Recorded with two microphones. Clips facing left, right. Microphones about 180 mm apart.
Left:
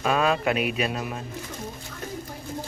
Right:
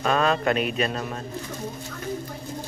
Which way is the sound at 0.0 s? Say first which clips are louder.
Right 1 dB; 5° left (ahead or behind).